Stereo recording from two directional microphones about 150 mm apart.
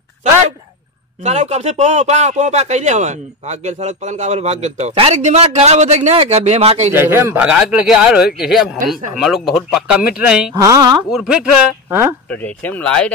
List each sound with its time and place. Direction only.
1.2 s a man's voice: 50° right (ahead or behind)
6.9 s speech: 15° right (ahead or behind)
7.4 s speech: 5° right (ahead or behind)
10.5 s a woman's voice: 25° right (ahead or behind)
11.1 s speech: 5° right (ahead or behind)
12.3 s speech: 10° left (ahead or behind)